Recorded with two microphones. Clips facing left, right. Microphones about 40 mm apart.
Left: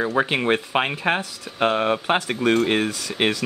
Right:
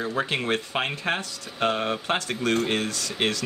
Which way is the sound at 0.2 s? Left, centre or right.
Centre.